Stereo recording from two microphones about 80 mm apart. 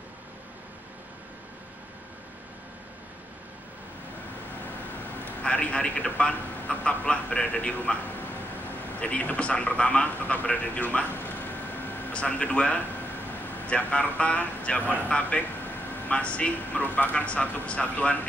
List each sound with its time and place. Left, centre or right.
5.2 s a man's voice: centre